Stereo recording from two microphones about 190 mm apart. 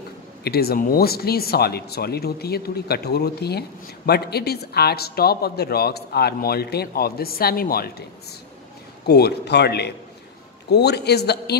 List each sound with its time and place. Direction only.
0.4 s speech: 55° left (ahead or behind)